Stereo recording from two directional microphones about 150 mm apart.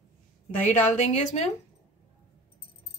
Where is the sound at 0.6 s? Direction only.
55° left (ahead or behind).